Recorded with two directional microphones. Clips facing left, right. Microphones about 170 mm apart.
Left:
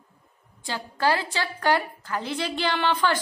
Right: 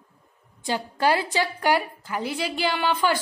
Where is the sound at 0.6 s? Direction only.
15° right (ahead or behind).